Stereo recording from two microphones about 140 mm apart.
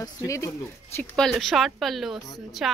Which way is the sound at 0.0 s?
20° left (ahead or behind).